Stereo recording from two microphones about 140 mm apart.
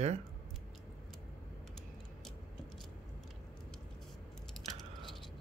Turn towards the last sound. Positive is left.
turn(degrees=0)  # may be behind; listen again after turning